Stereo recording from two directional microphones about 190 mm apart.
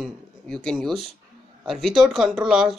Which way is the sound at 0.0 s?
Centre (ahead or behind).